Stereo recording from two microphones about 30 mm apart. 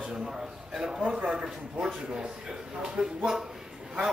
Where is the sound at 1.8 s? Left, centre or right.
Centre.